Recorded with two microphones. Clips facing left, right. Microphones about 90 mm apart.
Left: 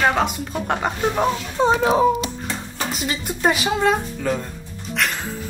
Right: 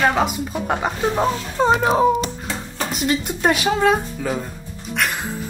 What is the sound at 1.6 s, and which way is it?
Speech, 40° right (ahead or behind).